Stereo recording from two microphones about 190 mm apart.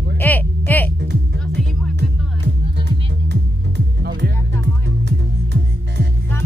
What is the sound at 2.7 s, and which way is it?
Music, 65° right (ahead or behind).